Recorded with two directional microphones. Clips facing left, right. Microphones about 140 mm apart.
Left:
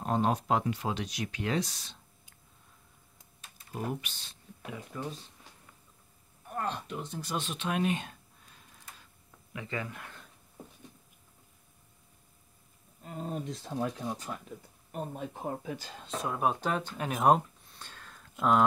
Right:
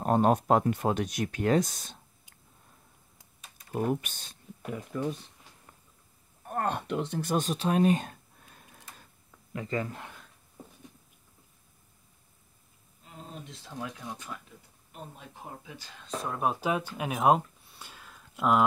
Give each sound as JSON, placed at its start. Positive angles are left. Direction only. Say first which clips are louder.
{"t": 0.0, "sound": "speech", "louder": "right 5 dB", "side_deg": -50}
{"t": 3.5, "sound": "a sound", "louder": "right 7 dB", "side_deg": -50}
{"t": 6.4, "sound": "speech", "louder": "right 4 dB", "side_deg": -50}
{"t": 9.5, "sound": "speech", "louder": "right 5 dB", "side_deg": -40}
{"t": 13.0, "sound": "speech", "louder": "left 8 dB", "side_deg": 50}
{"t": 16.3, "sound": "speech", "louder": "right 1 dB", "side_deg": 0}